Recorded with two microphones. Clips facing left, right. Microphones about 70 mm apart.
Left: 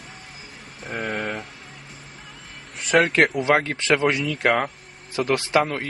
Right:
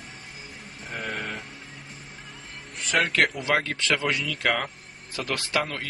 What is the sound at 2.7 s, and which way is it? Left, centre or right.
Music, centre.